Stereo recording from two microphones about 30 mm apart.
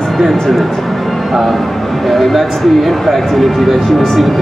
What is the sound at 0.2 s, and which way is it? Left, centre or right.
Speech, centre.